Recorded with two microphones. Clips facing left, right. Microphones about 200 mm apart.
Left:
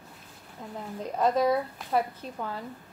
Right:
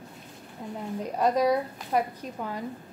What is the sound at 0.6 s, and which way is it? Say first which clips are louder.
A woman's voice: right 3 dB; 10° right (ahead or behind).